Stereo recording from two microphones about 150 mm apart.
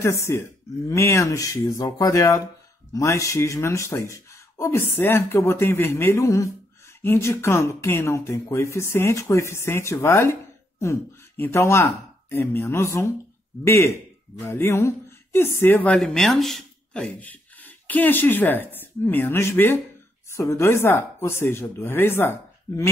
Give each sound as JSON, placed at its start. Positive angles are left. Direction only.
{"t": 0.0, "sound": "speech", "side_deg": 15}